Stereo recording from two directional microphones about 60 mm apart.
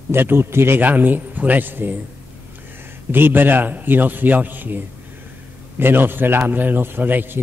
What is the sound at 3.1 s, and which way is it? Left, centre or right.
A man's voice, right.